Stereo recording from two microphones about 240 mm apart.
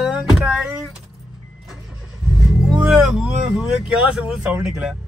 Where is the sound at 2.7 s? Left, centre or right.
Centre.